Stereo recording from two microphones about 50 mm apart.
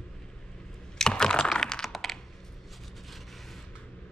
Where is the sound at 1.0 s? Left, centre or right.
Centre.